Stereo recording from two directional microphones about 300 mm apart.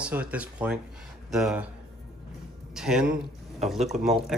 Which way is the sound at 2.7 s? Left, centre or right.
Centre.